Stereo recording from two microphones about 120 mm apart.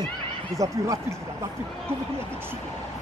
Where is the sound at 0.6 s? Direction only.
25° right (ahead or behind).